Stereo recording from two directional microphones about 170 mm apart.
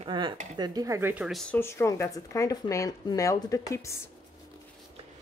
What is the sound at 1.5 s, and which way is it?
Speech, 15° left (ahead or behind).